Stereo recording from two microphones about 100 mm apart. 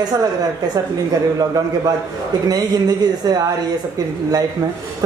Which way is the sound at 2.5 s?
40° right (ahead or behind).